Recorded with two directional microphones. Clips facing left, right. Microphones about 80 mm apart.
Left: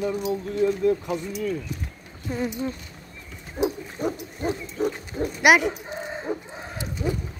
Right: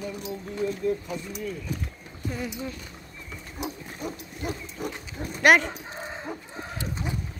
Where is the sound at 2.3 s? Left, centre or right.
Left.